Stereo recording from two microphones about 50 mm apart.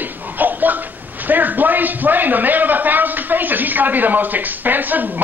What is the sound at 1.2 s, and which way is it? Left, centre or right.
A man's voice, right.